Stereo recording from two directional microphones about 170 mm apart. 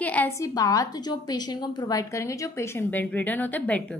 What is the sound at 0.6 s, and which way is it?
A woman's voice, 20° left (ahead or behind).